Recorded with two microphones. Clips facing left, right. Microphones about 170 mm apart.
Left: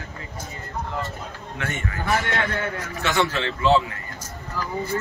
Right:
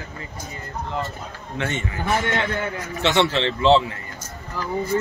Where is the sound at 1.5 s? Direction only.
20° right (ahead or behind).